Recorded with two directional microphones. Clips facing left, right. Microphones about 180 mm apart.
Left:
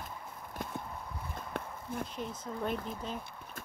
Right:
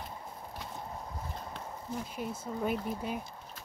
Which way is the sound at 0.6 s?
50° left (ahead or behind).